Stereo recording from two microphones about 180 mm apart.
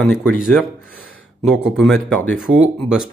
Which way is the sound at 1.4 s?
5° right (ahead or behind).